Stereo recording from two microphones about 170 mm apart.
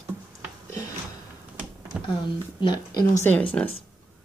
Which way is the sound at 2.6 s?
25° left (ahead or behind).